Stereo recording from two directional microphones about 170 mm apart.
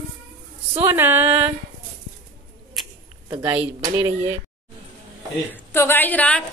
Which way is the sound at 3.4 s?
10° right (ahead or behind).